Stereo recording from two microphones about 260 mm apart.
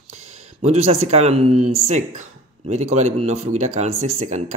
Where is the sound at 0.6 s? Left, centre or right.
Right.